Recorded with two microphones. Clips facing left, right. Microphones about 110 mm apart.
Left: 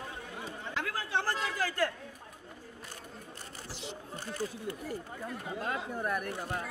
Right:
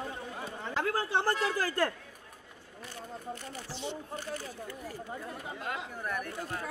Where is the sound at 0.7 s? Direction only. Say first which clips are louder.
Right 4 dB; 35° right (ahead or behind).